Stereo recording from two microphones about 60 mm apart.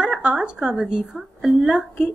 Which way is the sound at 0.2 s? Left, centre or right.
Centre.